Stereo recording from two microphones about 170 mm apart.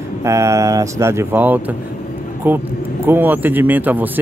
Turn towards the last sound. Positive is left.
turn(degrees=-10)  # may be behind; listen again after turning